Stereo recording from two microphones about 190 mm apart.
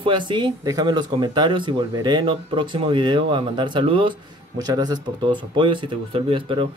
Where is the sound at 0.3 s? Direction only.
20° right (ahead or behind).